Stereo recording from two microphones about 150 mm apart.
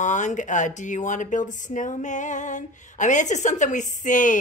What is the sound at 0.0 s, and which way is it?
Speech, 55° left (ahead or behind).